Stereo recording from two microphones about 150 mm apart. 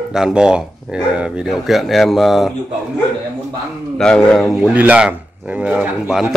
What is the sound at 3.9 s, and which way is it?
Speech, 5° left (ahead or behind).